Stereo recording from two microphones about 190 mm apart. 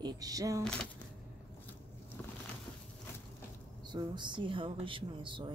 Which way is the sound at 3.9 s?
25° right (ahead or behind).